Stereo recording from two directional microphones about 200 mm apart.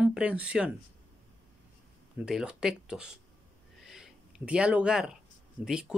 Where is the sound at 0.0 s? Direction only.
5° right (ahead or behind).